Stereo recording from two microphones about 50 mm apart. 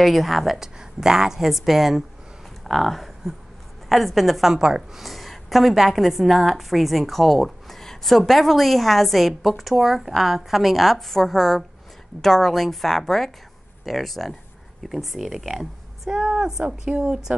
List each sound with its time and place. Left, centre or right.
0.0 s a woman's voice: centre
2.6 s a sound: centre
3.9 s a woman's voice: centre
5.0 s a woman's voice: centre
16.6 s speech: right
17.0 s speech: centre